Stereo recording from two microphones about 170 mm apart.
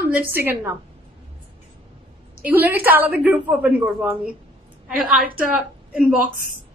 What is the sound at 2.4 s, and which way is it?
A woman's voice, 10° right (ahead or behind).